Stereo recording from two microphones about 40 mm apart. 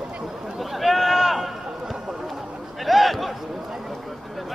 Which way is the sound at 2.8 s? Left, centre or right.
Centre.